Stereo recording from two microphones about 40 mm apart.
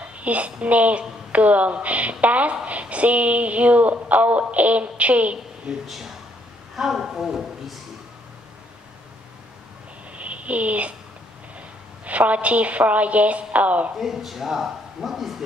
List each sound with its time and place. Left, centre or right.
0.2 s a woman's voice: right
5.9 s a man's voice: centre
10.1 s a sound: right
12.0 s a woman's voice: right
13.9 s a man's voice: centre